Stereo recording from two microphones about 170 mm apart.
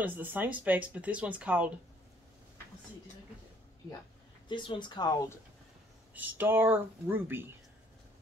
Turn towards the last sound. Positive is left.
turn(degrees=-10)  # may be behind; listen again after turning